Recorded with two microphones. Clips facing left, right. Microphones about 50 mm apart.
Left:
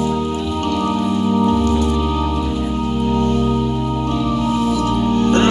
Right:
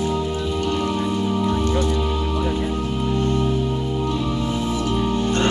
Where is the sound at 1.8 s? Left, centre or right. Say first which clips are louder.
Left 4 dB; centre.